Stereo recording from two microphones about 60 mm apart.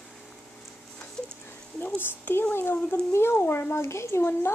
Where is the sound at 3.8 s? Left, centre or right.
Left.